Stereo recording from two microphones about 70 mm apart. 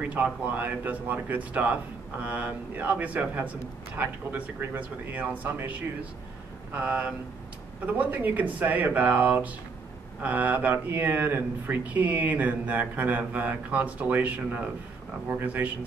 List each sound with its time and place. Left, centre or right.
0.0 s speech: right